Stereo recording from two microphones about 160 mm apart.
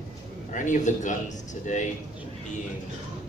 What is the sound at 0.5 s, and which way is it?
Speech, 50° left (ahead or behind).